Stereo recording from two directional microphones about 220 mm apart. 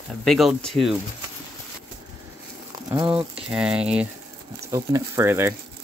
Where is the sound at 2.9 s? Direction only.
20° right (ahead or behind).